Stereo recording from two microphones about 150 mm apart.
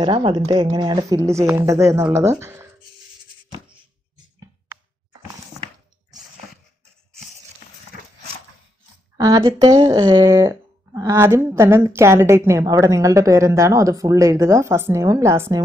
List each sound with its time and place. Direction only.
0.0 s speech: 35° right (ahead or behind); by 2.7 s 15° right (ahead or behind)
9.1 s speech: 20° right (ahead or behind)